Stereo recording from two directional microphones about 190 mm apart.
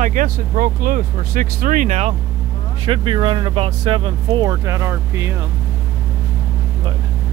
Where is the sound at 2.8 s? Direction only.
25° right (ahead or behind).